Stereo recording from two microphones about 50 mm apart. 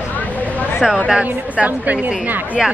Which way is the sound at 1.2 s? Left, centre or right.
Right.